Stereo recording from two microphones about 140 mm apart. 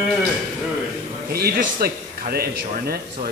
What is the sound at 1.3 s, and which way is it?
Speech, 90° right.